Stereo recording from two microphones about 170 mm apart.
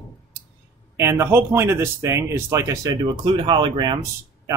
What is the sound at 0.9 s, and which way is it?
Speech, 15° right (ahead or behind).